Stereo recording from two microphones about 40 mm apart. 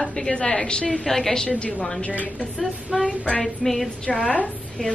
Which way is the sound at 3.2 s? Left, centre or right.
Left.